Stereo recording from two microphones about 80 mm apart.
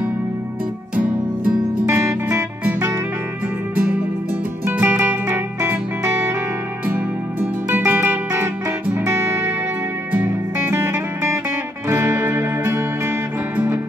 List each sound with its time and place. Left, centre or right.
0.9 s music: centre
1.9 s music: right
3.7 s music: centre